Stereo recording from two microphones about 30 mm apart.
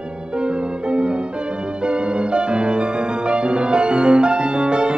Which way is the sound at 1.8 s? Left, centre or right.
Right.